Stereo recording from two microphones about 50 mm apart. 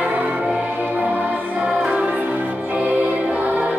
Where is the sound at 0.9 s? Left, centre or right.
Right.